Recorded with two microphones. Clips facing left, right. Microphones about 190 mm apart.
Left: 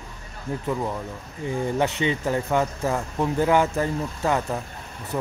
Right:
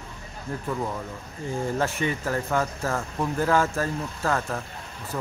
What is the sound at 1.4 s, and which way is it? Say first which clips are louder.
Speech: left 3 dB; 20° left (ahead or behind).